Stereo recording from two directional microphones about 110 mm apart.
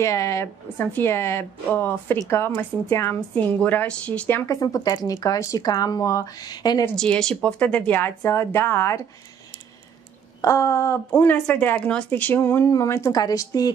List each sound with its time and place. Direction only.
0.0 s speech: 30° left (ahead or behind); by 4.4 s 10° left (ahead or behind)
4.5 s speech: 35° left (ahead or behind)
7.0 s speech: 5° left (ahead or behind); by 9.0 s 25° left (ahead or behind)
10.4 s speech: 30° left (ahead or behind)
11.1 s speech: 15° left (ahead or behind); by 13.7 s 35° left (ahead or behind)